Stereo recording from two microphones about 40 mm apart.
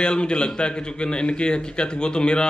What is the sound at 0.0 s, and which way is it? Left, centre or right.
Speech, left.